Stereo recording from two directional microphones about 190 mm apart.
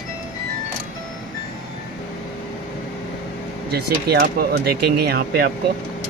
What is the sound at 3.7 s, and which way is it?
Speech, 55° right (ahead or behind).